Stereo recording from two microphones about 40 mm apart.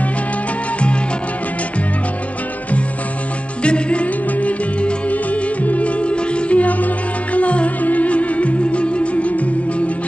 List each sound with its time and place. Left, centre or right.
3.6 s music: left